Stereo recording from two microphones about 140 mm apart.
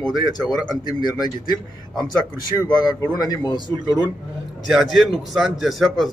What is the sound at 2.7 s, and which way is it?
Speech, 30° left (ahead or behind).